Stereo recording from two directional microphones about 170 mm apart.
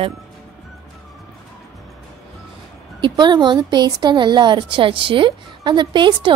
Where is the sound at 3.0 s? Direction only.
25° right (ahead or behind).